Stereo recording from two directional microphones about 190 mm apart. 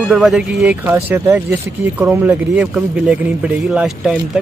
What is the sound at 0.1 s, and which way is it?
A man's voice, 5° right (ahead or behind).